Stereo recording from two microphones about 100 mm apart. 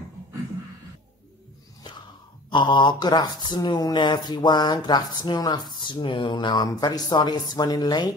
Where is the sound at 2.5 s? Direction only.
50° left (ahead or behind).